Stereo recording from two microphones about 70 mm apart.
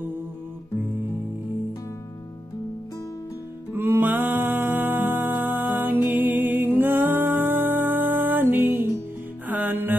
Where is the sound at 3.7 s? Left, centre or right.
Right.